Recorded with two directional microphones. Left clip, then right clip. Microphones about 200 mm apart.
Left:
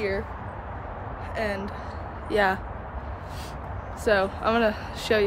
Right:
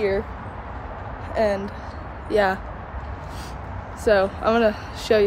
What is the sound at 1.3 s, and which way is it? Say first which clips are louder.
Speech: right 8 dB; 10° right (ahead or behind).